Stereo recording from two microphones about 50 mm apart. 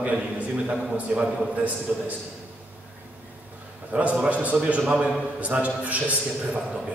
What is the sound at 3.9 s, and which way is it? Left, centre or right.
A man's voice, right.